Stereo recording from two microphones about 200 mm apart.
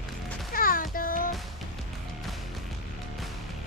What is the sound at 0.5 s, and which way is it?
Music, 45° left (ahead or behind).